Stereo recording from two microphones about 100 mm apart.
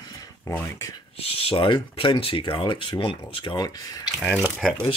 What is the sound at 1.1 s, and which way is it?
Speech, 75° left (ahead or behind).